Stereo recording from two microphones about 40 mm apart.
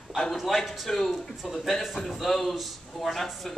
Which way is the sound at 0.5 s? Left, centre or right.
Centre.